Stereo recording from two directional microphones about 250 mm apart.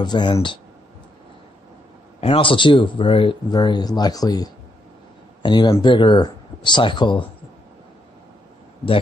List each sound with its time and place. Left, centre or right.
0.0 s speech: centre
2.1 s speech: left